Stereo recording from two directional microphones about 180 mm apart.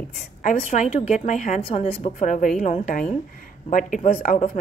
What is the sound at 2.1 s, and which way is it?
A woman's voice, 45° left (ahead or behind).